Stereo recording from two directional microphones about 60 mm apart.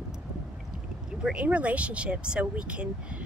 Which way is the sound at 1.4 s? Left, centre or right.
Right.